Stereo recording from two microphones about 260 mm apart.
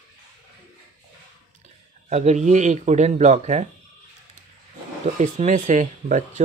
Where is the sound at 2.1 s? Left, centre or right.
Right.